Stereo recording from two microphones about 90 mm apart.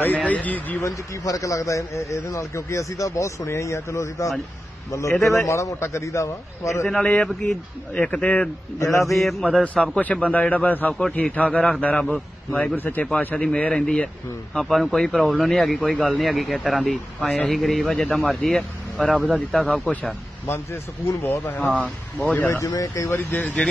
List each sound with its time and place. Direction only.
0.0 s speech: 15° left (ahead or behind)
0.8 s a man's voice: 40° left (ahead or behind)
5.5 s a man's voice: 30° left (ahead or behind)
6.9 s speech: 10° left (ahead or behind)
8.7 s a man's voice: 35° left (ahead or behind)
9.2 s speech: centre (ahead or behind)
9.6 s speech: 15° left (ahead or behind)
13.4 s speech: 10° left (ahead or behind)
19.8 s speech: 15° left (ahead or behind)
20.4 s speech: 25° left (ahead or behind)
22.6 s a man's voice: 35° left (ahead or behind)
23.1 s speech: 20° left (ahead or behind)